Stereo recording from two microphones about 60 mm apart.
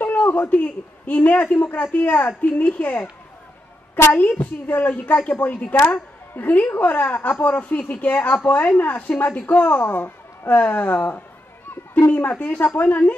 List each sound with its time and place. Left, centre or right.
0.0 s a sound: left
1.0 s a woman's voice: left
4.1 s a woman's voice: left